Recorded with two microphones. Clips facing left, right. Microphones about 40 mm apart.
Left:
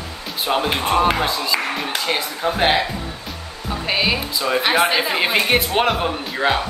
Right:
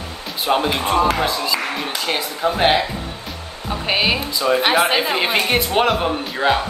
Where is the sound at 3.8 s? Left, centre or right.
Centre.